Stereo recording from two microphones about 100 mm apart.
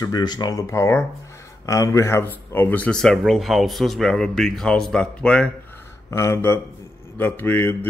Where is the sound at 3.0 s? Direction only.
Centre (ahead or behind).